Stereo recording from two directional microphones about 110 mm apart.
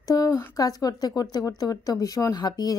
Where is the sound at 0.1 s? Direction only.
30° left (ahead or behind).